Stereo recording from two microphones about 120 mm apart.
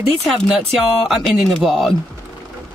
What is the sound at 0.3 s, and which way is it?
Speech, centre (ahead or behind).